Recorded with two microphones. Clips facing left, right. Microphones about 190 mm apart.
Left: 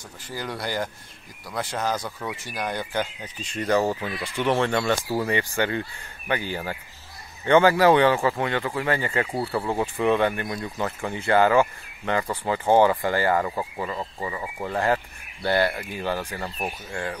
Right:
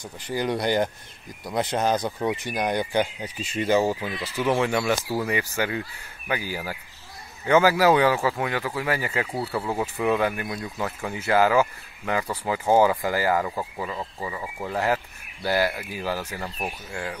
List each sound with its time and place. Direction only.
0.3 s speech: 20° right (ahead or behind)
16.4 s speech: 5° left (ahead or behind)
16.9 s speech: 5° right (ahead or behind)